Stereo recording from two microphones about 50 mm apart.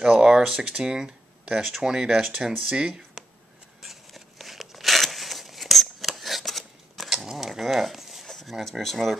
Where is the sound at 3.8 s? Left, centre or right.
Centre.